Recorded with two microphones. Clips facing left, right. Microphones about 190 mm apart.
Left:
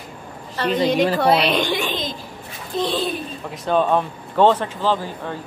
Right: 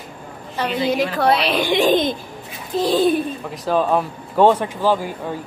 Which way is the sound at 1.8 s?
50° right (ahead or behind).